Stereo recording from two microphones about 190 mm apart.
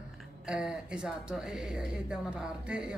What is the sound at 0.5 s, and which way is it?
Speech, 5° right (ahead or behind).